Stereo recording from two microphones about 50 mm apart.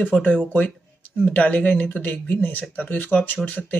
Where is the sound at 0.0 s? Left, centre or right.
Left.